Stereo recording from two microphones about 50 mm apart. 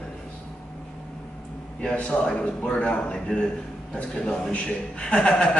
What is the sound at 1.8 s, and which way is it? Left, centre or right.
A man's voice, left.